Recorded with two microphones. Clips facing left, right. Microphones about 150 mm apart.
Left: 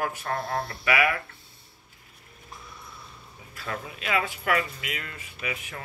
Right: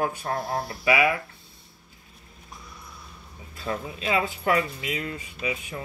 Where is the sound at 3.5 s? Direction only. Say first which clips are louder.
Right 4 dB; 25° right (ahead or behind).